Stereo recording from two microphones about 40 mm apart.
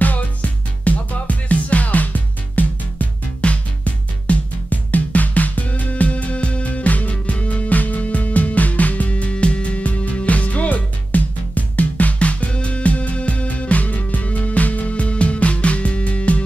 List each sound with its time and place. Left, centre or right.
0.0 s music: left
3.4 s music: left
3.8 s music: left